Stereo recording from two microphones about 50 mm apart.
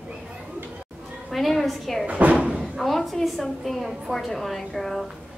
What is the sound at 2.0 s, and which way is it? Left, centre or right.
Speech, right.